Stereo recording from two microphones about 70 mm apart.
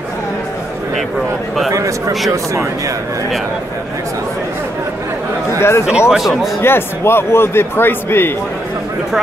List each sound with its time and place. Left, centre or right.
1.7 s speech: right
5.6 s a man's voice: left
5.9 s speech: centre
6.1 s speech: centre
6.6 s a man's voice: left